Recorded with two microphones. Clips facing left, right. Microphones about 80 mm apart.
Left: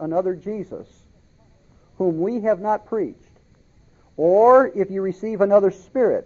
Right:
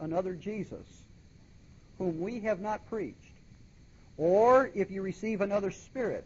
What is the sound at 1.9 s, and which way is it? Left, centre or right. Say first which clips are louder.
Speech: left 13 dB; left.